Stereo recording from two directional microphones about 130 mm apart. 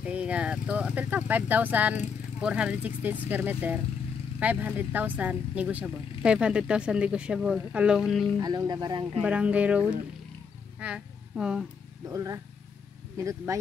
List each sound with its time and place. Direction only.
0.0 s speech: 10° right (ahead or behind)
8.4 s speech: 30° right (ahead or behind)
9.2 s speech: 10° right (ahead or behind)
12.1 s speech: 25° right (ahead or behind)